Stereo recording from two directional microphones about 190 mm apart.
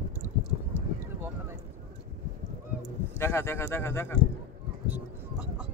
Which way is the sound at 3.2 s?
15° left (ahead or behind).